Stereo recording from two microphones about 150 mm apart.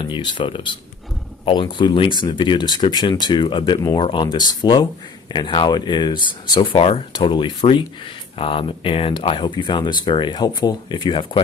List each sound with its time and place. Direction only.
0.0 s speech: 30° left (ahead or behind)